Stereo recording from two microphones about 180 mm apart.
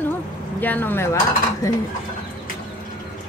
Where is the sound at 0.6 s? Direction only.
10° left (ahead or behind).